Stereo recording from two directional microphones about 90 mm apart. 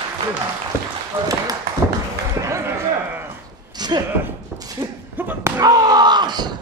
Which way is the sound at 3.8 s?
50° right (ahead or behind).